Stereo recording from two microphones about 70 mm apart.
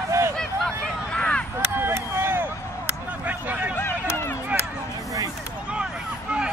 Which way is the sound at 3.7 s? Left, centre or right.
Left.